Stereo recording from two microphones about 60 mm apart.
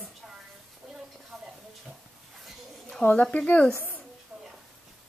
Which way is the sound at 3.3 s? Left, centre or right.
Left.